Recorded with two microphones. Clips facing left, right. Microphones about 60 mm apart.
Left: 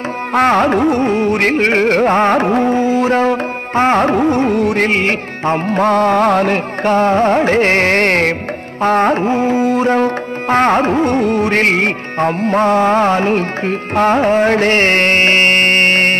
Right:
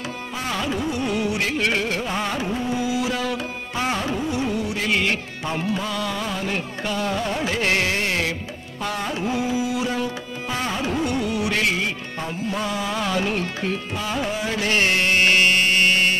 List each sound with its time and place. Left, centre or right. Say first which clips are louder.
0.3 s carnatic music: left 16 dB; left